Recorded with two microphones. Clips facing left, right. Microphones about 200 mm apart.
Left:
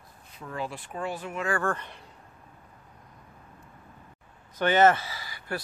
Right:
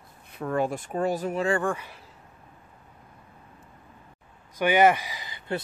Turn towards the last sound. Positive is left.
turn(degrees=-20)  # may be behind; listen again after turning